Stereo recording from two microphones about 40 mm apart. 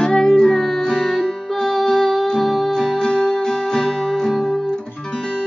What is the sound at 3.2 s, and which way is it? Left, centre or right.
Guitar, centre.